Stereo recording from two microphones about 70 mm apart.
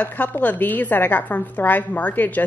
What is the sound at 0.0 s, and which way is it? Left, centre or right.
Speech, left.